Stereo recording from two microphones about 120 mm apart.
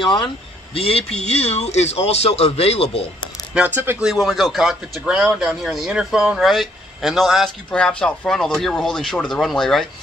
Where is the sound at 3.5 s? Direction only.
15° right (ahead or behind).